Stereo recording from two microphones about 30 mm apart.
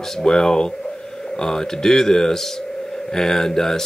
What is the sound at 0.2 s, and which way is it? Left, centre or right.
Speech, centre.